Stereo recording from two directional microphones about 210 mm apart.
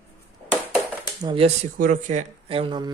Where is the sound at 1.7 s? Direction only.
40° right (ahead or behind); by 2.9 s 25° right (ahead or behind).